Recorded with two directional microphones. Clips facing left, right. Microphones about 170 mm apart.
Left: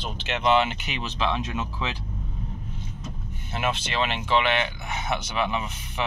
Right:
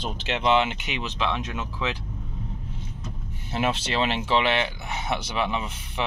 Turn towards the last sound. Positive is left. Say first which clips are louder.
# even
turn(degrees=-30)  # may be behind; listen again after turning